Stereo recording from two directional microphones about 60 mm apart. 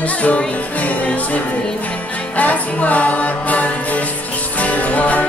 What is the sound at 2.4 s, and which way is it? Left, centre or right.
Music, left.